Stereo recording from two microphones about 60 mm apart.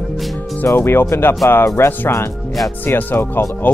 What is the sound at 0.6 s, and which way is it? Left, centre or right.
Speech, left.